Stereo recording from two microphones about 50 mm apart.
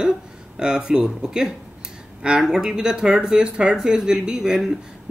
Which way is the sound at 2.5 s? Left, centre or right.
Centre.